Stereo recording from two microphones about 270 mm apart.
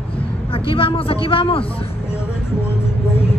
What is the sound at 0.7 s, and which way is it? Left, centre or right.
A man's voice, centre.